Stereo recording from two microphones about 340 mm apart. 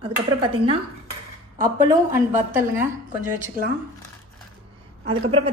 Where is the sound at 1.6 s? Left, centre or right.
Centre.